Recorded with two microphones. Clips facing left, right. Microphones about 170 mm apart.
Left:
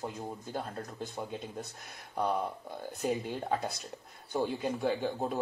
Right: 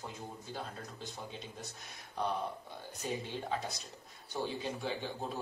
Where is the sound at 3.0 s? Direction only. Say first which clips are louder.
Left 6 dB; 55° left (ahead or behind).